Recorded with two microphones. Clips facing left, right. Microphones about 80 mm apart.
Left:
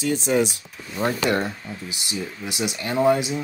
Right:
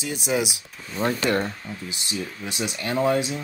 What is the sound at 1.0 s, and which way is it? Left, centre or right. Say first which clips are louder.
Speech: left 1 dB; centre.